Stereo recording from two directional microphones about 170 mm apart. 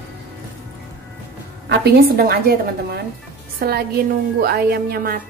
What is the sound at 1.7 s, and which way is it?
A woman's voice, 65° right (ahead or behind).